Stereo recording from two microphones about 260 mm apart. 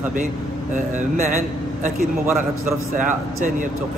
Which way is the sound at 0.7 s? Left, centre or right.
Right.